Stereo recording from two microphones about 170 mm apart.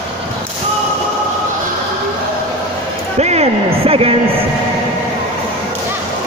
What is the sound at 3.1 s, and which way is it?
Speech, 40° right (ahead or behind).